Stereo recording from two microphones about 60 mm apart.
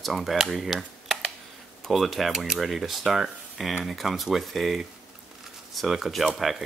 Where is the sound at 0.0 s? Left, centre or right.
Centre.